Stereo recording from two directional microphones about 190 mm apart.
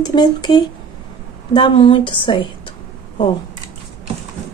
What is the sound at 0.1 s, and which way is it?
A woman's voice, 25° left (ahead or behind).